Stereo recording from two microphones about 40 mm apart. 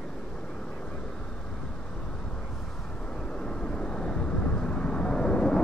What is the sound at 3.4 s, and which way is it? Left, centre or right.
Vehicle, left.